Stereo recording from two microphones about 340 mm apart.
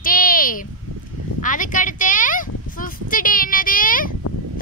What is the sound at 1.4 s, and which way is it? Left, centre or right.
A child's voice, left.